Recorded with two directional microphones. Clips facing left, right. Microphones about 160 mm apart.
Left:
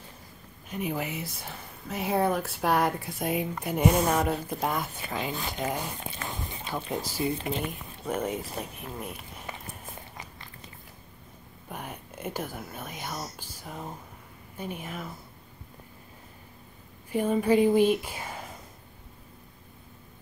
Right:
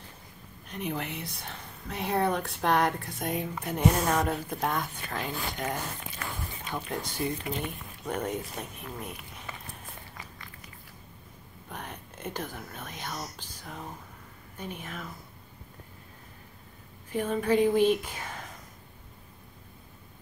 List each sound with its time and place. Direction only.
0.7 s speech: 5° left (ahead or behind)
6.0 s dog: 25° left (ahead or behind)
6.9 s speech: 5° left (ahead or behind)
7.2 s speech: 25° left (ahead or behind)
8.0 s speech: 5° left (ahead or behind)
9.5 s walk: 20° left (ahead or behind)
11.7 s speech: 10° left (ahead or behind)
17.1 s speech: 10° left (ahead or behind)